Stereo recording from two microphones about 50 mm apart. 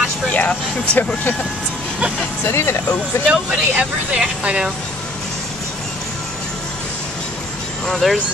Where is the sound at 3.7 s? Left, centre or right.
Right.